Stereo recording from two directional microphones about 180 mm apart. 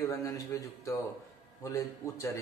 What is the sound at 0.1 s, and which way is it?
A man's voice, 20° left (ahead or behind).